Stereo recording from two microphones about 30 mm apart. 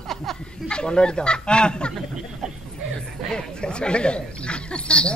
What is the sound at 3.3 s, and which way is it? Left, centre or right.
A man's voice, left.